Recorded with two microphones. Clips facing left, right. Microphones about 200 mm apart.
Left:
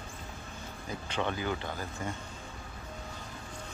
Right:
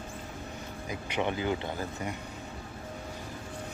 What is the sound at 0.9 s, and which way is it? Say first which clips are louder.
Speech: right 2 dB; 15° right (ahead or behind).